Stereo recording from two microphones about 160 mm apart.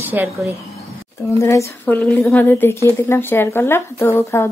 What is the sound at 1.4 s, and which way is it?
A woman's voice, 20° left (ahead or behind).